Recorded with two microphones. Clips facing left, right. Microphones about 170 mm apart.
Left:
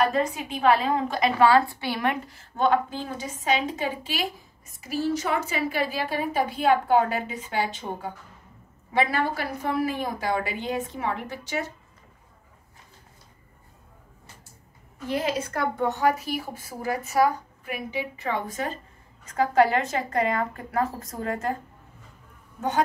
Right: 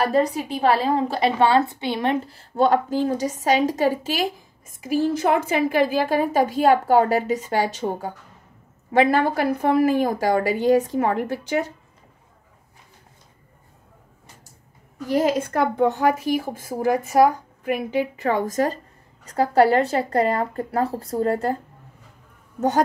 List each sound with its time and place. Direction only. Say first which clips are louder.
0.0 s a woman's voice: right 4 dB; 35° right (ahead or behind)
15.0 s a woman's voice: right 6 dB; 45° right (ahead or behind)